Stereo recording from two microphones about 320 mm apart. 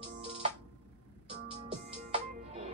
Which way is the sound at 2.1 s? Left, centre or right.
Centre.